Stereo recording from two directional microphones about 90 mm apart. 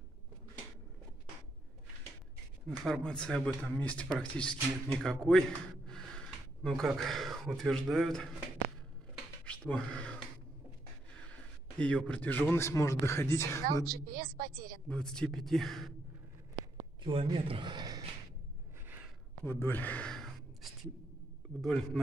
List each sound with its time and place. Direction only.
2.7 s a man's voice: centre (ahead or behind)
3.0 s a man's voice: 10° left (ahead or behind)
5.9 s gasp: 5° left (ahead or behind)
7.0 s a man's voice: centre (ahead or behind)
9.5 s speech: 10° left (ahead or behind)
11.8 s a man's voice: 15° left (ahead or behind); by 13.8 s 30° left (ahead or behind)
14.9 s a man's voice: 10° left (ahead or behind)
17.0 s a man's voice: 80° right; by 18.0 s 50° right (ahead or behind)
19.4 s a man's voice: 25° left (ahead or behind)
20.1 s a sound: centre (ahead or behind)
21.5 s a man's voice: 5° left (ahead or behind)